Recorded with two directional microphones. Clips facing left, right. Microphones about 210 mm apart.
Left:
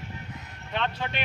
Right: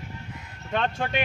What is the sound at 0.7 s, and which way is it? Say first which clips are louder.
Speech: right 4 dB; 50° right (ahead or behind).